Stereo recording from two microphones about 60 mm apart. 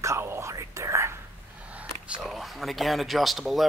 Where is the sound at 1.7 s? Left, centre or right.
Right.